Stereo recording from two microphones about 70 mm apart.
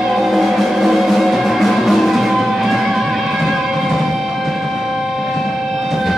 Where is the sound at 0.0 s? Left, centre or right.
Centre.